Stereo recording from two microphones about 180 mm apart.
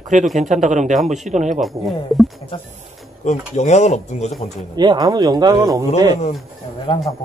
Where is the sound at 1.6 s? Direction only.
Centre (ahead or behind).